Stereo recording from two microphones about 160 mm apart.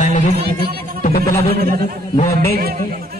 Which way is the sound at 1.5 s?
70° right (ahead or behind).